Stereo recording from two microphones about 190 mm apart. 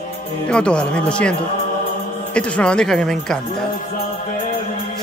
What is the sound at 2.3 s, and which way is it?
A man's voice, 5° left (ahead or behind).